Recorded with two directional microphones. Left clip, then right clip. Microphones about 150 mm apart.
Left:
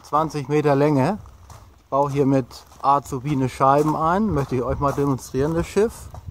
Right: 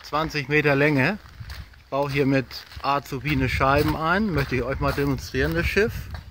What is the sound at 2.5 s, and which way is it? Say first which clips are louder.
Speech: left 6 dB; 15° right (ahead or behind).